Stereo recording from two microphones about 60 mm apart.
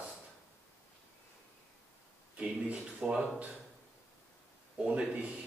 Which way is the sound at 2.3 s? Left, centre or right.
Centre.